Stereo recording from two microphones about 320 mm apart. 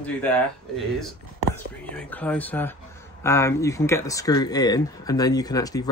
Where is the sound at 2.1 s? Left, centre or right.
Centre.